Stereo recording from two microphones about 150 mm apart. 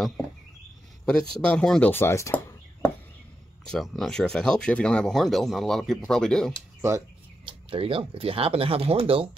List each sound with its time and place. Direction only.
1.0 s speech: 5° left (ahead or behind)
3.6 s speech: 5° left (ahead or behind)
7.4 s speech: 35° right (ahead or behind)